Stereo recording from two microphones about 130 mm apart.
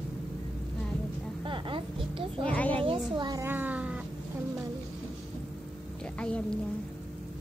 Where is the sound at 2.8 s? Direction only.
35° right (ahead or behind).